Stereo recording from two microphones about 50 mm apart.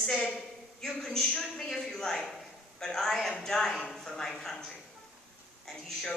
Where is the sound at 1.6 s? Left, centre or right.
Centre.